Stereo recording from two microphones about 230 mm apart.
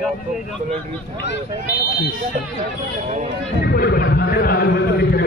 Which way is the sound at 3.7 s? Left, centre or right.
Left.